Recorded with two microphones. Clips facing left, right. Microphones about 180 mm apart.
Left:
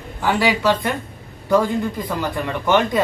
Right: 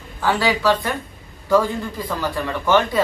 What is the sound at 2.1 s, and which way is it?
Speech, 15° left (ahead or behind).